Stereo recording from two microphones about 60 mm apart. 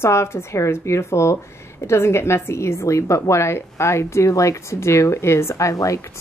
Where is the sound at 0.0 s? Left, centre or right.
Left.